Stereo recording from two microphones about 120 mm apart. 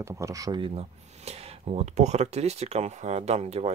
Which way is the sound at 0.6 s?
50° right (ahead or behind).